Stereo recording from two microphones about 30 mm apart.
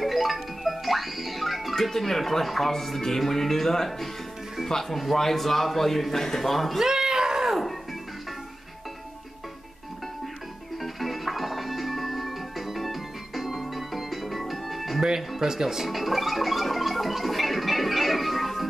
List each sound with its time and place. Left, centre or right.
0.0 s music: centre
1.8 s speech: centre
6.8 s a sound: centre
10.8 s music: centre
15.0 s music: centre